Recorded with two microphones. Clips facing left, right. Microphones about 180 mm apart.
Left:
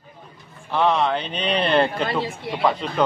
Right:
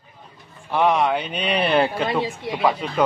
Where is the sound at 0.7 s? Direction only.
10° right (ahead or behind).